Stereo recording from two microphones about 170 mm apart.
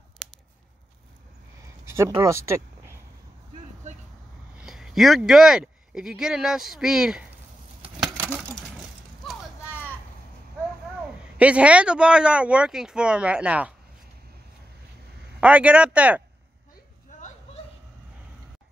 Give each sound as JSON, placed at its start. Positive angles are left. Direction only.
{"t": 1.9, "sound": "a sound", "side_deg": -15}
{"t": 2.1, "sound": "speech", "side_deg": -15}
{"t": 4.6, "sound": "speech", "side_deg": 0}
{"t": 8.2, "sound": "coin", "side_deg": -10}
{"t": 8.5, "sound": "vehicle", "side_deg": 0}
{"t": 11.3, "sound": "speech", "side_deg": -5}
{"t": 15.4, "sound": "speech", "side_deg": -5}